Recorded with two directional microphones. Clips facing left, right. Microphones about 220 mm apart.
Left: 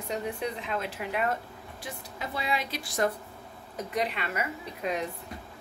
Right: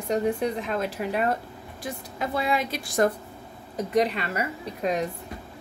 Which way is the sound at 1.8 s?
50° right (ahead or behind).